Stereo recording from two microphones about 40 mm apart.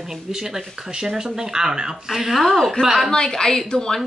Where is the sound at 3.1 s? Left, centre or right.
Centre.